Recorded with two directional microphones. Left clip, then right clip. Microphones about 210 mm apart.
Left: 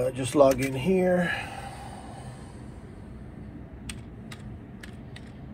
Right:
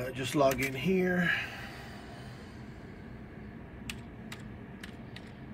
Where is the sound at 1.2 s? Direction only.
15° left (ahead or behind).